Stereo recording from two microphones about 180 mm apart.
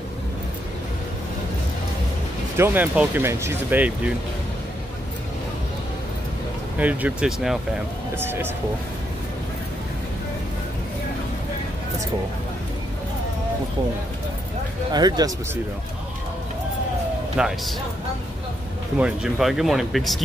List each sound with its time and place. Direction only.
2.5 s speech: 10° right (ahead or behind)
6.8 s speech: 10° right (ahead or behind)
14.9 s speech: 25° right (ahead or behind)
17.4 s speech: centre (ahead or behind)
18.9 s speech: 5° right (ahead or behind)